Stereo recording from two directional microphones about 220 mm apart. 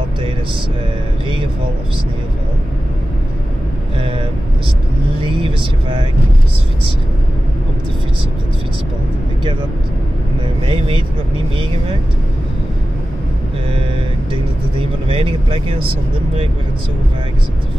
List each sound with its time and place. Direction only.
5.2 s speech: 25° right (ahead or behind)
10.7 s speech: 25° right (ahead or behind)
14.3 s speech: 25° right (ahead or behind)